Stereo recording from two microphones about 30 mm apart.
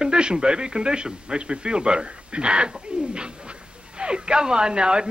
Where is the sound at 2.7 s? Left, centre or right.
Right.